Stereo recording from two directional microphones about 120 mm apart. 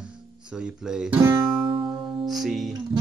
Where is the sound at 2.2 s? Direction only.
Centre (ahead or behind).